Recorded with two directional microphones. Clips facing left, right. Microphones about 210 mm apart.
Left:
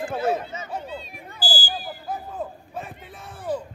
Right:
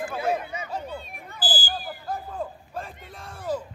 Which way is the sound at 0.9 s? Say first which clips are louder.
Left 1 dB; 55° right (ahead or behind).